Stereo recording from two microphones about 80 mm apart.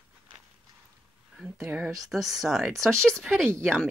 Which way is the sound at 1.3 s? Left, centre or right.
Centre.